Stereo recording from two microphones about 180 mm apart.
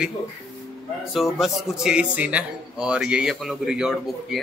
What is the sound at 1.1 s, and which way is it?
Speech, centre (ahead or behind).